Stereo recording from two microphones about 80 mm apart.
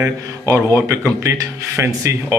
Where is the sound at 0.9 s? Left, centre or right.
Right.